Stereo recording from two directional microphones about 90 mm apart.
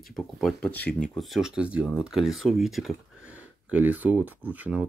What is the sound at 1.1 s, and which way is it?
Speech, centre (ahead or behind).